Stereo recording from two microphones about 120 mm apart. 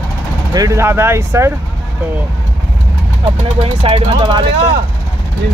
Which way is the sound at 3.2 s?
50° right (ahead or behind).